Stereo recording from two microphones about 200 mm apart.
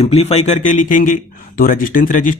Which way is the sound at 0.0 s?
30° left (ahead or behind).